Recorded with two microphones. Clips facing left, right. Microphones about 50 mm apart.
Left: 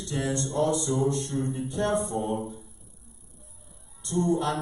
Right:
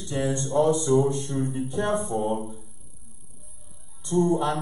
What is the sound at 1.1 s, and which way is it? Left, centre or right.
Speech, centre.